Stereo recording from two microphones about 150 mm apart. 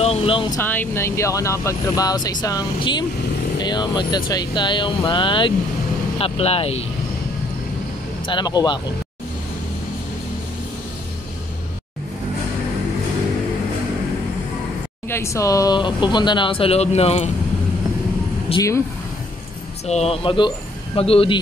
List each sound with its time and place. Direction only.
0.0 s speech: 40° left (ahead or behind)
0.6 s speech: 15° left (ahead or behind); by 6.8 s 40° left (ahead or behind)
8.3 s speech: 30° left (ahead or behind)
15.0 s speech: 20° left (ahead or behind); by 17.3 s 45° left (ahead or behind)
18.5 s speech: 40° left (ahead or behind)
19.9 s speech: 45° left (ahead or behind)